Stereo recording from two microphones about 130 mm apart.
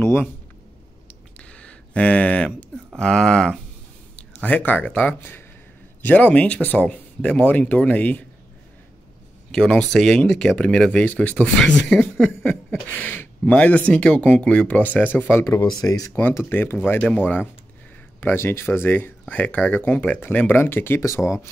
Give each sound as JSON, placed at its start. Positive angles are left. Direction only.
{"t": 0.0, "sound": "speech", "side_deg": 20}
{"t": 1.0, "sound": "a sound", "side_deg": 10}
{"t": 3.0, "sound": "speech", "side_deg": 5}
{"t": 9.5, "sound": "speech", "side_deg": 5}
{"t": 16.2, "sound": "speech", "side_deg": 15}